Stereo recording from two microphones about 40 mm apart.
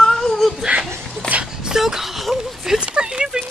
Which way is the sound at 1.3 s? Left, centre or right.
Right.